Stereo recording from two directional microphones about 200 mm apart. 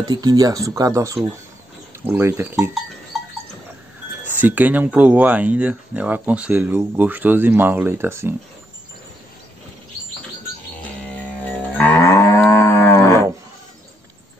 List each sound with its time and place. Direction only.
0.0 s speech: 20° right (ahead or behind)
4.3 s speech: 10° right (ahead or behind)
11.7 s moo: 10° left (ahead or behind)